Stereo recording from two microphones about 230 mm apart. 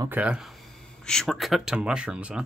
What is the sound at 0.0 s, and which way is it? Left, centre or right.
Speech, centre.